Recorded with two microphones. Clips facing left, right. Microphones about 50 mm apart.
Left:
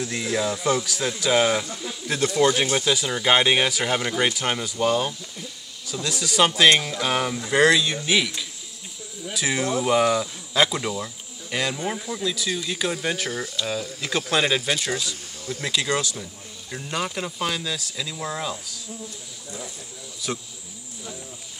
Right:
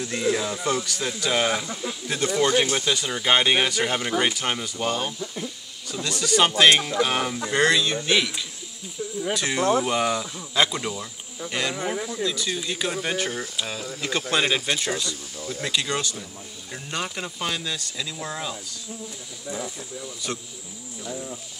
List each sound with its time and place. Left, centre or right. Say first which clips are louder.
0.0 s speech: right 1 dB; centre
5.2 s speech: right 6 dB; right
5.9 s speech: right 2 dB; centre
9.3 s speech: right 2 dB; centre
20.2 s speech: left 2 dB; centre
21.1 s speech: right 7 dB; right